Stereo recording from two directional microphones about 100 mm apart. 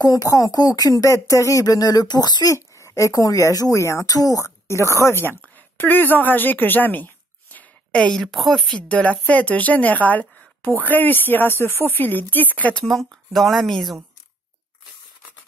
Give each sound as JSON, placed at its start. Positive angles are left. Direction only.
{"t": 0.0, "sound": "speech", "side_deg": 35}
{"t": 2.5, "sound": "a woman's voice", "side_deg": 30}
{"t": 8.7, "sound": "speech", "side_deg": 10}
{"t": 12.8, "sound": "a woman's voice", "side_deg": 0}